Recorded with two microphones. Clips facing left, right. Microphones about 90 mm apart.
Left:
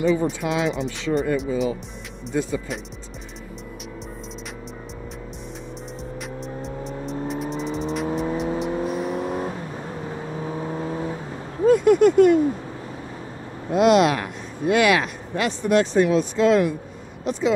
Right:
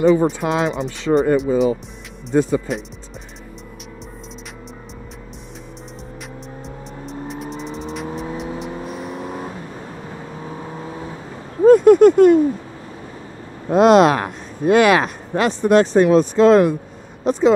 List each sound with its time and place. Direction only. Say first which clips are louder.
0.0 s speech: right 6 dB; 40° right (ahead or behind)
6.2 s music: left 3 dB; centre (ahead or behind)
11.6 s a sound: right 6 dB; 40° right (ahead or behind)
13.7 s speech: right 5 dB; 40° right (ahead or behind)